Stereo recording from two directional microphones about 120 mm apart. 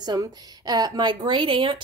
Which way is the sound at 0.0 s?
35° right (ahead or behind).